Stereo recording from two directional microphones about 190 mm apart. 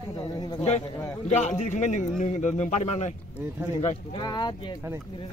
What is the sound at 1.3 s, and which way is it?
A man's voice, 40° left (ahead or behind).